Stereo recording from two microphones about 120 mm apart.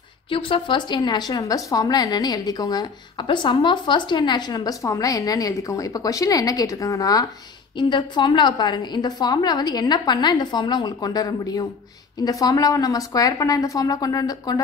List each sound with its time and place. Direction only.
0.3 s speech: 45° left (ahead or behind)